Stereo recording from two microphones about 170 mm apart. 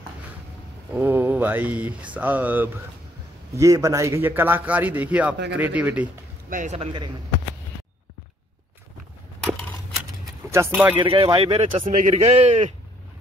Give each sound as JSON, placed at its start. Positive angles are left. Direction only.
{"t": 0.9, "sound": "a man's voice", "side_deg": -10}
{"t": 6.5, "sound": "speech", "side_deg": -45}
{"t": 10.5, "sound": "a man's voice", "side_deg": -15}
{"t": 11.0, "sound": "a man's voice", "side_deg": -30}
{"t": 11.8, "sound": "a man's voice", "side_deg": -45}